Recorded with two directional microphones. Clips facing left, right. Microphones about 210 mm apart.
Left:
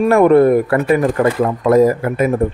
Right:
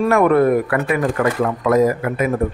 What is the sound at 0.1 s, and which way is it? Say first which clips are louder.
A man's voice: left 5 dB; 30° left (ahead or behind).